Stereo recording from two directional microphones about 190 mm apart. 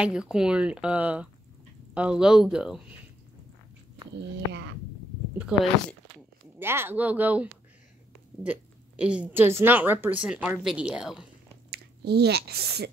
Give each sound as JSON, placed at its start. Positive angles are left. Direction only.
{"t": 0.0, "sound": "speech", "side_deg": -5}
{"t": 5.5, "sound": "a woman's voice", "side_deg": -5}
{"t": 8.5, "sound": "a woman's voice", "side_deg": -5}
{"t": 11.7, "sound": "speech", "side_deg": -60}